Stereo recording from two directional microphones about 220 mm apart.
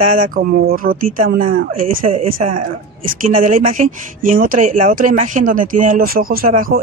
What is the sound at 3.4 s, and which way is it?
Speech, 40° right (ahead or behind).